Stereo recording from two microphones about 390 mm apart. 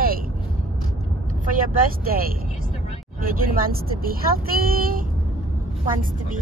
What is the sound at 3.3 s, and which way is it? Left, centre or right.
A woman's voice, right.